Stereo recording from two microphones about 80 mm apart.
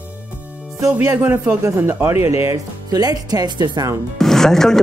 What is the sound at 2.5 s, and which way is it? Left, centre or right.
Speech, right.